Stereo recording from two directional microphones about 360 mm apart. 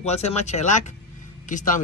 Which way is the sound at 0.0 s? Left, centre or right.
Centre.